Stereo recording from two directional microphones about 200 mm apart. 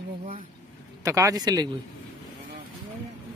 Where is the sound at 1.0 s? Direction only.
15° right (ahead or behind).